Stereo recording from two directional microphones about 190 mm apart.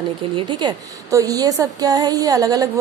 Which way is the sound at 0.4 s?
25° right (ahead or behind).